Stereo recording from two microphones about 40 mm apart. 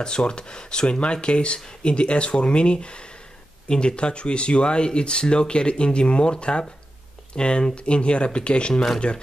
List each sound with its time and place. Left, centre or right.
0.0 s speech: left